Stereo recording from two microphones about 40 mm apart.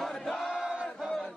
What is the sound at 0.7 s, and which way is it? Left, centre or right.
Battle cry, centre.